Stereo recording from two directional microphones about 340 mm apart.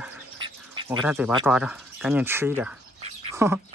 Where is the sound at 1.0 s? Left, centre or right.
Centre.